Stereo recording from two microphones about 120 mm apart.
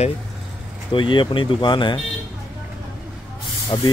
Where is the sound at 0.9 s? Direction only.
40° left (ahead or behind).